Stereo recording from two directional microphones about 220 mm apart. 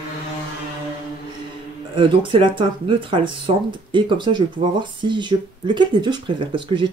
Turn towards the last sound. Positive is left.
turn(degrees=-20)  # may be behind; listen again after turning